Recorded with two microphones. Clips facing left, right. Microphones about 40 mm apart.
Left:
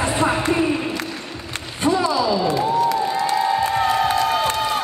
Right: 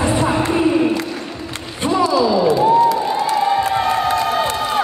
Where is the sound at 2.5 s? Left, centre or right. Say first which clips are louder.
Right 6 dB; right.